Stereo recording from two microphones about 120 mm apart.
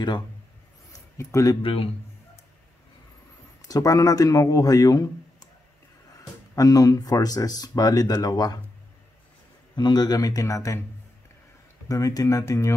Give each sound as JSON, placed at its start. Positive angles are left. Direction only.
{"t": 0.9, "sound": "speech", "side_deg": 25}
{"t": 1.6, "sound": "a man's voice", "side_deg": 50}
{"t": 3.6, "sound": "speech", "side_deg": 30}
{"t": 6.5, "sound": "speech", "side_deg": 30}
{"t": 9.8, "sound": "speech", "side_deg": 35}
{"t": 11.9, "sound": "speech", "side_deg": 30}